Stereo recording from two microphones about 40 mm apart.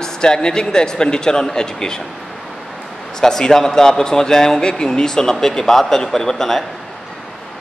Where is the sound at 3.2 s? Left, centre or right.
Centre.